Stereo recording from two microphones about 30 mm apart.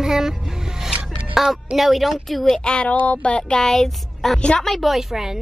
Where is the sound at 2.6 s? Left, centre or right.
Left.